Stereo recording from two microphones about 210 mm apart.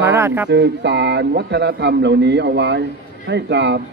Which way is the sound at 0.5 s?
55° right (ahead or behind).